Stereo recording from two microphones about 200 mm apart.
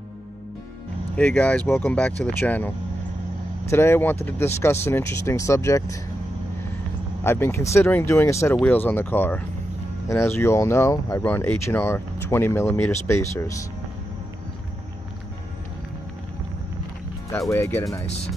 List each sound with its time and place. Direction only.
1.1 s speech: 5° left (ahead or behind)
3.7 s speech: 10° left (ahead or behind)
7.2 s speech: 15° left (ahead or behind)
17.5 s speech: 10° left (ahead or behind)
18.0 s speech: 30° left (ahead or behind)